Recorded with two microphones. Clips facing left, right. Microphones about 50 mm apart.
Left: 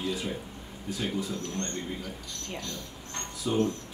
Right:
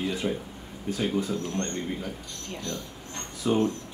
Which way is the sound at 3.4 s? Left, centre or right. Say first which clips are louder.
Right 4 dB; right.